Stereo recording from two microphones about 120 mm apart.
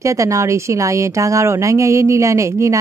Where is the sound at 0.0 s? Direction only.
25° right (ahead or behind).